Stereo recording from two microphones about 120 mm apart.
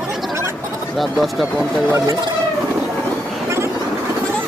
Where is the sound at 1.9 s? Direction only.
30° right (ahead or behind).